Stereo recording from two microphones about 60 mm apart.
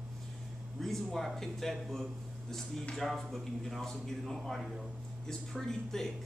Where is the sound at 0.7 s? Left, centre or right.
Centre.